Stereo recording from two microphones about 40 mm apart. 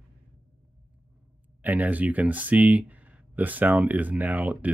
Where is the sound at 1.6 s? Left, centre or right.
Right.